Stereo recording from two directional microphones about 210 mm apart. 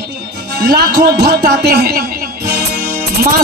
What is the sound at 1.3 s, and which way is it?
Speech, 50° right (ahead or behind).